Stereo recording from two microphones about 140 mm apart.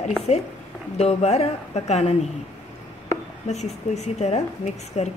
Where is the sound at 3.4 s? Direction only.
55° left (ahead or behind).